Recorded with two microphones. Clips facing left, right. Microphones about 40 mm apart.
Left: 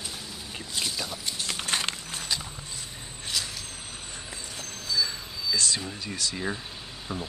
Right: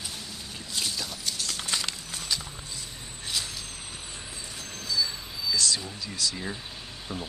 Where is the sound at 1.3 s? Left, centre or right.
Left.